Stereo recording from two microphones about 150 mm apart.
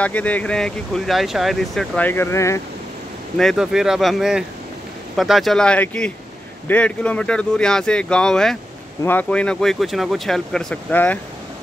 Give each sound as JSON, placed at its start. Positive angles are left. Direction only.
{"t": 0.0, "sound": "speech", "side_deg": 10}
{"t": 3.3, "sound": "speech", "side_deg": 0}